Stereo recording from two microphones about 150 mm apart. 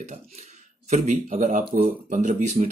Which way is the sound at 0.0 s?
50° right (ahead or behind).